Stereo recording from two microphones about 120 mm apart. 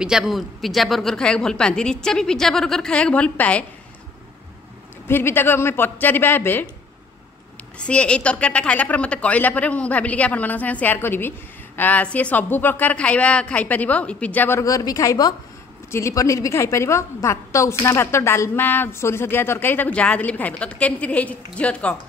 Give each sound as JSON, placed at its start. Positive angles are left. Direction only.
{"t": 0.0, "sound": "a woman's voice", "side_deg": -5}
{"t": 5.0, "sound": "a woman's voice", "side_deg": 20}
{"t": 7.8, "sound": "a woman's voice", "side_deg": 10}
{"t": 14.6, "sound": "a woman's voice", "side_deg": 30}